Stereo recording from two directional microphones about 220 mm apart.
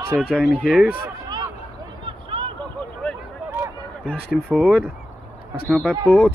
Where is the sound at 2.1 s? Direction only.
25° right (ahead or behind).